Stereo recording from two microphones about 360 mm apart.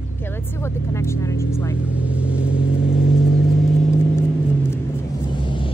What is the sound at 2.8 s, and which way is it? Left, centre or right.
Vehicle, centre.